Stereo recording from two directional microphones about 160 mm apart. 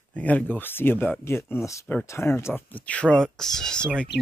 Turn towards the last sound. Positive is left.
turn(degrees=5)  # may be behind; listen again after turning